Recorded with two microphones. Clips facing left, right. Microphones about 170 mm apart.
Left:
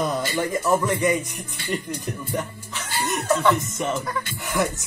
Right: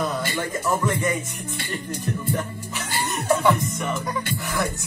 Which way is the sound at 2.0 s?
15° left (ahead or behind).